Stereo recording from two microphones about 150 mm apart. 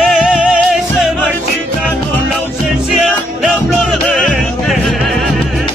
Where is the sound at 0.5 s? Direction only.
5° left (ahead or behind).